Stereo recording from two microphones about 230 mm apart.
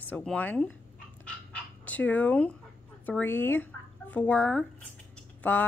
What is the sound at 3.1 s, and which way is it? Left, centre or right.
A woman's voice, centre.